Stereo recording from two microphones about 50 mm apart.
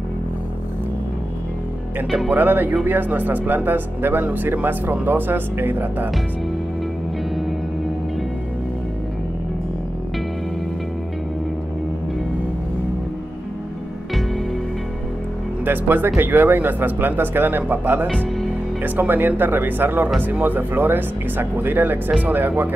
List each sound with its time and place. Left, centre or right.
2.3 s speech: right
15.6 s speech: right